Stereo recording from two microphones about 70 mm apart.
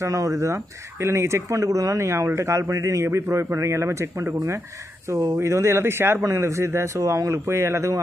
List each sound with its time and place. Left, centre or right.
0.0 s speech: right